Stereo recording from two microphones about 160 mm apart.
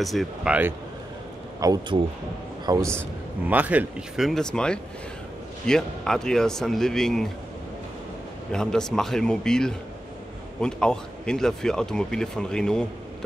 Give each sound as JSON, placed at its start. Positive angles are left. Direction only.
{"t": 0.0, "sound": "speech", "side_deg": 0}
{"t": 1.6, "sound": "a man's voice", "side_deg": -25}
{"t": 3.4, "sound": "speech", "side_deg": -10}
{"t": 8.5, "sound": "speech", "side_deg": 5}